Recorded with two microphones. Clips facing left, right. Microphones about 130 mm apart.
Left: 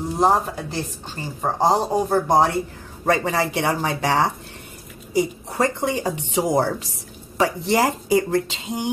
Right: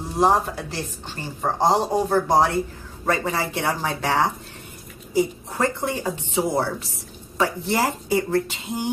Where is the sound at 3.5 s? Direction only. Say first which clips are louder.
Left 3 dB; 15° left (ahead or behind).